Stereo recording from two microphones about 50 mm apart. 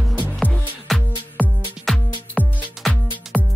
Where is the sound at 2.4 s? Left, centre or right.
Left.